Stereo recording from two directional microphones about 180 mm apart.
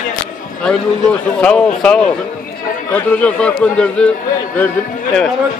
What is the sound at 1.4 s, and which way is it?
A man's voice, 5° left (ahead or behind).